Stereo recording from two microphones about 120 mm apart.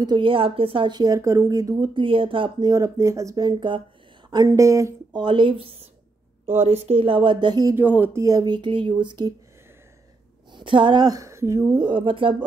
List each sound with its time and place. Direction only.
0.0 s speech: 40° right (ahead or behind)
2.0 s speech: 45° right (ahead or behind)
2.7 s speech: 25° right (ahead or behind); by 3.8 s 45° right (ahead or behind)
4.3 s speech: 30° right (ahead or behind)
5.1 s a woman's voice: 45° right (ahead or behind)
7.7 s speech: 15° right (ahead or behind); by 9.3 s 40° right (ahead or behind)
10.5 s speech: 45° right (ahead or behind); by 11.6 s 25° right (ahead or behind)
11.7 s speech: 40° right (ahead or behind)